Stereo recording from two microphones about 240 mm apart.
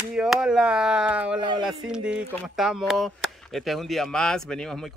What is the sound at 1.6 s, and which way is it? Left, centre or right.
Speech, centre.